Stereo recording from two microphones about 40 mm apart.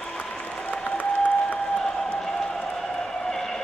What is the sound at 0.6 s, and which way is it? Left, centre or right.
Applause, left.